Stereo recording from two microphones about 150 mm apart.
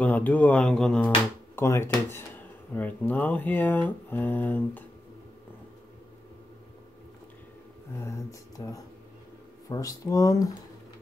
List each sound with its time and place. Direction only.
0.0 s speech: 10° left (ahead or behind)
8.0 s speech: 20° left (ahead or behind)